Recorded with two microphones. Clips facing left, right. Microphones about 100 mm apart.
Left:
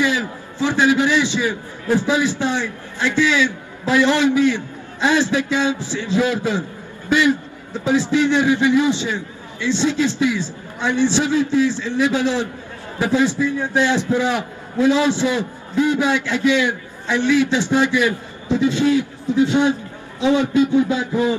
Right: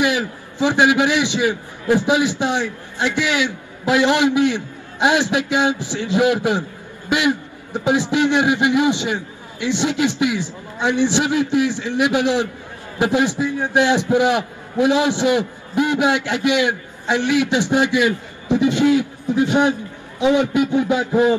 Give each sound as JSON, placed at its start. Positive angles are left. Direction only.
{"t": 0.0, "sound": "a man's voice", "side_deg": -15}
{"t": 21.1, "sound": "a man's voice", "side_deg": -55}